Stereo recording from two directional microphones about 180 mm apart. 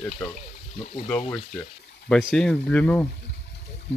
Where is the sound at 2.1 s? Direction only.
Centre (ahead or behind).